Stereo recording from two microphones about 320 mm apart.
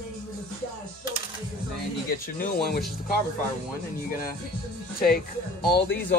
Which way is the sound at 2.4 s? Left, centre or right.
Left.